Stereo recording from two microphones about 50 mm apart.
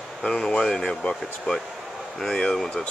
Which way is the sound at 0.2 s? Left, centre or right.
Left.